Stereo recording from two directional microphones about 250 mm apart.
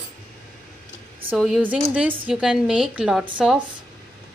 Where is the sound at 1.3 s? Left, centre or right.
Centre.